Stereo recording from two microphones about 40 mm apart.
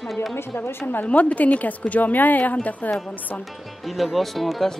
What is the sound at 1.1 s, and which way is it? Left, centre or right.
Speech, left.